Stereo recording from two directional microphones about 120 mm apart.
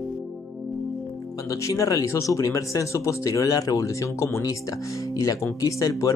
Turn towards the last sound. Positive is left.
turn(degrees=30)  # may be behind; listen again after turning